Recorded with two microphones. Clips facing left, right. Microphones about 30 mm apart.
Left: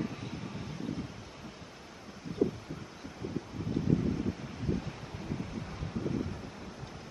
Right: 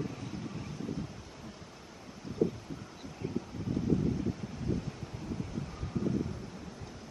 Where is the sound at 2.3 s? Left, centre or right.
Centre.